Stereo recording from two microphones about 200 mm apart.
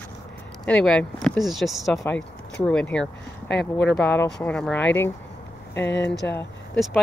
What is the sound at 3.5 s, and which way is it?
Speech, 55° left (ahead or behind).